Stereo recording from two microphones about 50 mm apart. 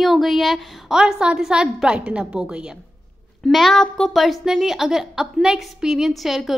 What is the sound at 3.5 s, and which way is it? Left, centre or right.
Speech, centre.